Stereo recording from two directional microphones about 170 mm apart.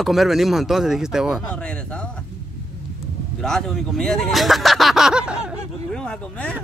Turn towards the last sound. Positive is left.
turn(degrees=5)  # may be behind; listen again after turning